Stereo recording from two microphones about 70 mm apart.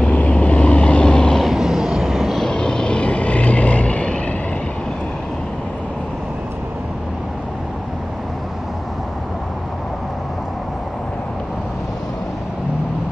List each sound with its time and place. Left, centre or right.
0.0 s vehicle: centre
1.4 s vehicle: centre
2.4 s vehicle: centre